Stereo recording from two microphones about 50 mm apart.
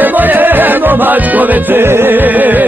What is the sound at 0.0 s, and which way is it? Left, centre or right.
Music, right.